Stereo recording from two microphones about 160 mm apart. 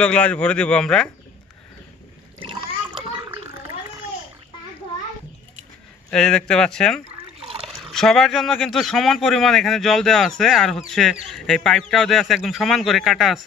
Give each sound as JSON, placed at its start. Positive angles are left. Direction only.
{"t": 0.0, "sound": "speech", "side_deg": 5}
{"t": 3.3, "sound": "a sound", "side_deg": -15}
{"t": 6.0, "sound": "speech", "side_deg": 5}